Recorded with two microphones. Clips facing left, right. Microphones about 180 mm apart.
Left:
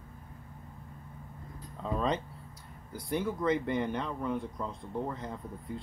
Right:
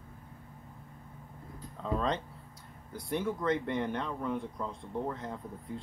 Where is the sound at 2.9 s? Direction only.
Centre (ahead or behind).